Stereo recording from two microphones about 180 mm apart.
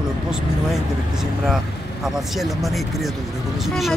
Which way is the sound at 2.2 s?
Centre (ahead or behind).